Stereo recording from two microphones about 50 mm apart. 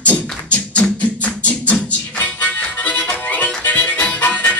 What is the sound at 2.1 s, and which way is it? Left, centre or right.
Harmonica, left.